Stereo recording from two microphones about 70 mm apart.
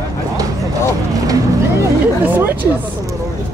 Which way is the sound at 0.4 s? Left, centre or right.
Right.